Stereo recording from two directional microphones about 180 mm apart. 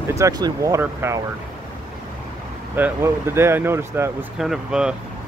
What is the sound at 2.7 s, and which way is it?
Speech, 10° right (ahead or behind).